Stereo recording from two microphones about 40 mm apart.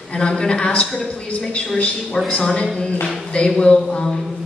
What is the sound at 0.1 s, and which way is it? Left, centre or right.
A man's voice, left.